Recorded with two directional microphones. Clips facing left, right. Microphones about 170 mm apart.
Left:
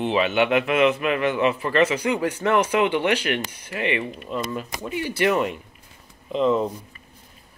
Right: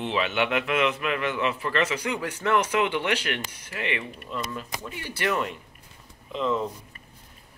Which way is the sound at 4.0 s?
20° left (ahead or behind).